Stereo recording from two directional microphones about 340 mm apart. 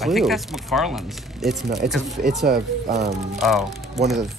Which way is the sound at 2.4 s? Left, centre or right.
Right.